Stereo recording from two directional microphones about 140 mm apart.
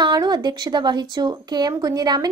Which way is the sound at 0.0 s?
30° right (ahead or behind).